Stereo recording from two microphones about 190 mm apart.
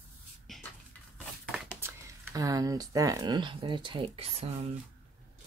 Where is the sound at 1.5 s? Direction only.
10° right (ahead or behind); by 4.5 s 30° right (ahead or behind).